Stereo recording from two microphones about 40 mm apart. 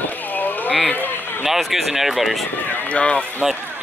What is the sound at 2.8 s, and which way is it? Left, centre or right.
Speech, left.